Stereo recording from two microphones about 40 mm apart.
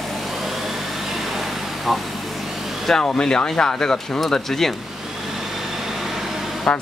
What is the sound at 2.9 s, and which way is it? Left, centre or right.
Speech, centre.